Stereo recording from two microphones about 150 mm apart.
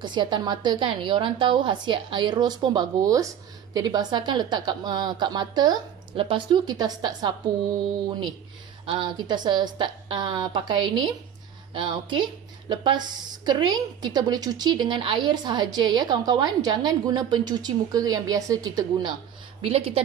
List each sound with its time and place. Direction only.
0.0 s a woman's voice: 30° right (ahead or behind)
8.8 s a woman's voice: 35° right (ahead or behind)
19.6 s a woman's voice: 40° right (ahead or behind)